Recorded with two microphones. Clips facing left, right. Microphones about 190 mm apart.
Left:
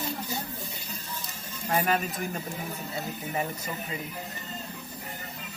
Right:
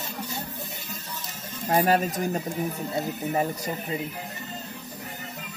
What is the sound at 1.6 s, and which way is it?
Speech, 35° right (ahead or behind).